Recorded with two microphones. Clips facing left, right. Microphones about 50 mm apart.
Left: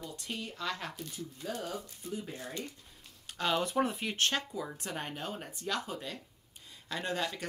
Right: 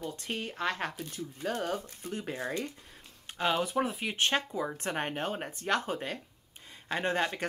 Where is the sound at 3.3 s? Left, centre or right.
Centre.